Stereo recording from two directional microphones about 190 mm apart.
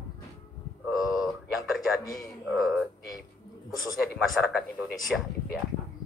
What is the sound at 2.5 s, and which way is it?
Speech, centre (ahead or behind).